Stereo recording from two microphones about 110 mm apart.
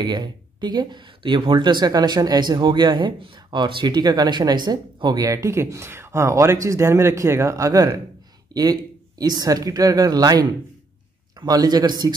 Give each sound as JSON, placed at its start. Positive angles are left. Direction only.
{"t": 0.0, "sound": "speech", "side_deg": -40}
{"t": 9.2, "sound": "speech", "side_deg": -40}